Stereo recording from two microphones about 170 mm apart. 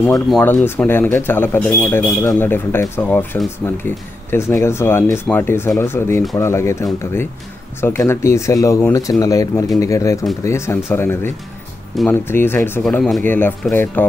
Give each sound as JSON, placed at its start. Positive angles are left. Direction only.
{"t": 0.0, "sound": "speech", "side_deg": 5}